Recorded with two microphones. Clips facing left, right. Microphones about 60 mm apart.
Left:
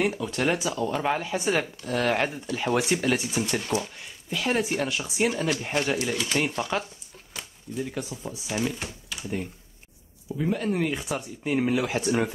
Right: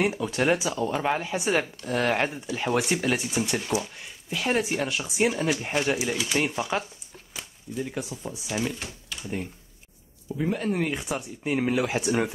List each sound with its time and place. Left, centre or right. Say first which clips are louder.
0.0 s speech: right 1 dB; centre